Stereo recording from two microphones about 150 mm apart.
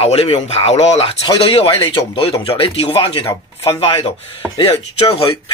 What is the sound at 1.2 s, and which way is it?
Speech, 35° left (ahead or behind).